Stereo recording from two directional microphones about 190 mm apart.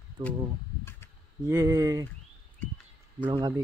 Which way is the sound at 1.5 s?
15° right (ahead or behind).